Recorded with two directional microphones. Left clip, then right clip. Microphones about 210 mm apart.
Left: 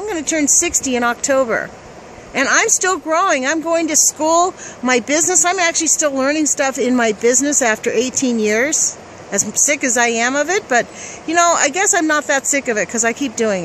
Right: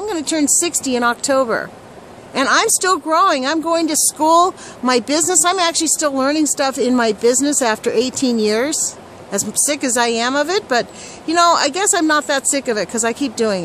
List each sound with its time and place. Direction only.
0.0 s a woman's voice: 5° right (ahead or behind)
8.1 s speech: 40° right (ahead or behind)
8.4 s a woman's voice: 5° right (ahead or behind)
9.4 s speech: 40° right (ahead or behind)
9.7 s a woman's voice: 5° right (ahead or behind)